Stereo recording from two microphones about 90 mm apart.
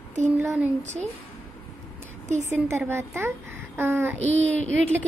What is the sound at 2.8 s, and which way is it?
A woman's voice, 30° right (ahead or behind).